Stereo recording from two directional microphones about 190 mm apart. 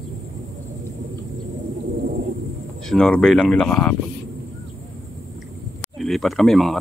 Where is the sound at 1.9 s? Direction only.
45° right (ahead or behind).